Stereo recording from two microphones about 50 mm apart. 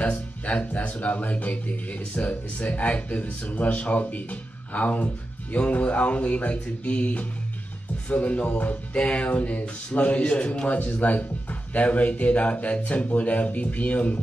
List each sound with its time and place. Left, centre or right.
0.0 s speech: left